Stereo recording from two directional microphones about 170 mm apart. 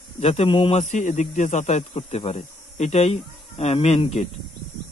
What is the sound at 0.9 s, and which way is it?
Speech, 45° left (ahead or behind).